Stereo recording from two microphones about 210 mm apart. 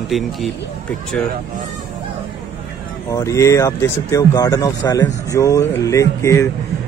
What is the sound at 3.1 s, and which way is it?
Speech, 15° left (ahead or behind).